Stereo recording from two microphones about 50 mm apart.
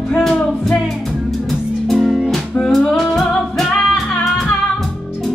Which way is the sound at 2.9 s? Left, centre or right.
Centre.